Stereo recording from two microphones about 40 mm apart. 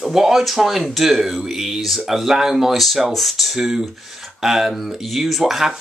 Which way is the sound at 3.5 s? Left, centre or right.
Centre.